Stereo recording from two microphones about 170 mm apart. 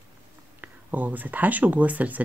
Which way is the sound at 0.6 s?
10° right (ahead or behind).